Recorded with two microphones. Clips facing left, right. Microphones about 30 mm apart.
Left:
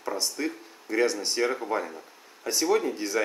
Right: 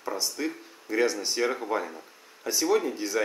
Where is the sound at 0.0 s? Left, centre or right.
Centre.